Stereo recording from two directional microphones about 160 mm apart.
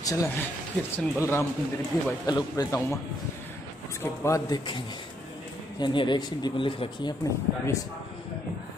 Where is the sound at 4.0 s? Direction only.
20° left (ahead or behind).